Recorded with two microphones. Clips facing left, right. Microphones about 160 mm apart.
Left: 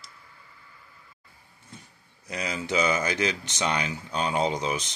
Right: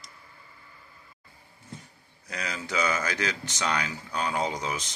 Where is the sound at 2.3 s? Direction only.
20° left (ahead or behind).